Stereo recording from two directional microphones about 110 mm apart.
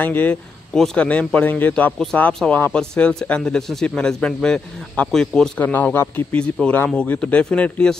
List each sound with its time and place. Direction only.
0.0 s speech: 15° left (ahead or behind)
5.6 s speech: 15° left (ahead or behind)